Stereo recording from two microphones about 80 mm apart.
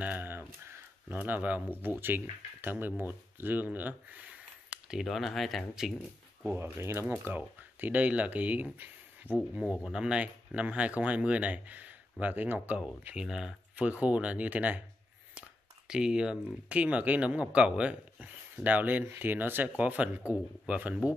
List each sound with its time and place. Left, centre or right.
0.0 s speech: right
5.0 s speech: centre
6.5 s speech: right
9.5 s speech: centre
15.9 s speech: centre